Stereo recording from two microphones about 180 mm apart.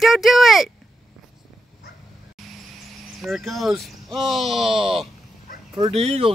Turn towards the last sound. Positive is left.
turn(degrees=-35)  # may be behind; listen again after turning